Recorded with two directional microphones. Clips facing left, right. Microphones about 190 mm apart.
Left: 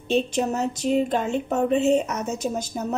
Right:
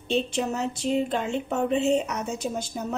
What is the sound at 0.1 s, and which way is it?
A woman's voice, 40° left (ahead or behind).